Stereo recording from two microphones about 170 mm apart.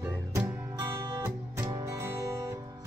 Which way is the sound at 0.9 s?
15° right (ahead or behind).